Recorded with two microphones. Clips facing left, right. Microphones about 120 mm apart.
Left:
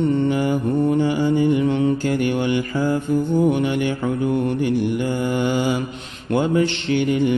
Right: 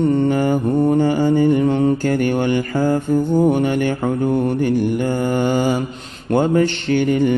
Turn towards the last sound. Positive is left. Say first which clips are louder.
# right 3 dB
turn(degrees=-45)  # may be behind; listen again after turning